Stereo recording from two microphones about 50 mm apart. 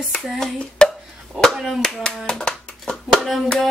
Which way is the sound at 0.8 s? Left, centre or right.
Left.